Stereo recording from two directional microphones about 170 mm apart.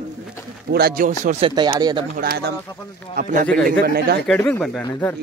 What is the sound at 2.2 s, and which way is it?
Speech, 75° right (ahead or behind).